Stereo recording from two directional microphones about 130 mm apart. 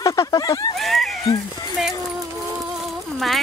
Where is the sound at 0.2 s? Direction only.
30° left (ahead or behind).